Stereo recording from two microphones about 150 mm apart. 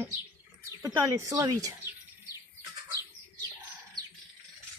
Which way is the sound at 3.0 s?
20° right (ahead or behind).